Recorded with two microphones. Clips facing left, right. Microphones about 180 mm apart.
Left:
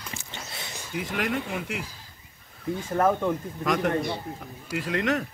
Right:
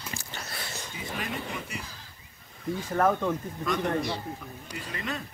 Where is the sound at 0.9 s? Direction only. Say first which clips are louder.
Left 8 dB; 80° left.